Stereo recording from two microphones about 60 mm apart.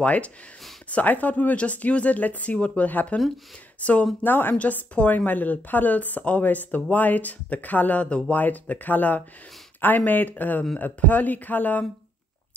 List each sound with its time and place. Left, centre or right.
0.0 s a woman's voice: left
4.3 s speech: left
4.6 s a woman's voice: left